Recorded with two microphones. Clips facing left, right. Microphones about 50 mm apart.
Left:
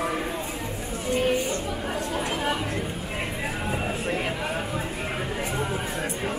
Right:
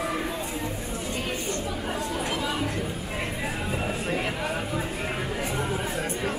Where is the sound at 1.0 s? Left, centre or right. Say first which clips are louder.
Left 10 dB; left.